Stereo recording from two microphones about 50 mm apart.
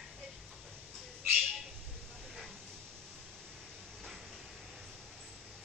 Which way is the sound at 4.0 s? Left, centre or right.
Centre.